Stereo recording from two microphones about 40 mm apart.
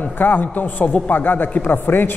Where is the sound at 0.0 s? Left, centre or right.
Left.